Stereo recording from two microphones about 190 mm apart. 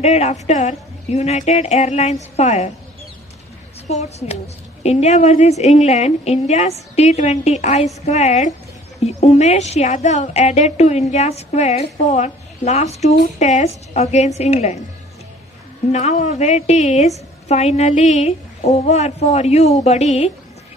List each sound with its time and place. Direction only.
0.0 s a woman's voice: 35° left (ahead or behind)
4.8 s a woman's voice: 35° left (ahead or behind)
15.9 s a woman's voice: 40° left (ahead or behind)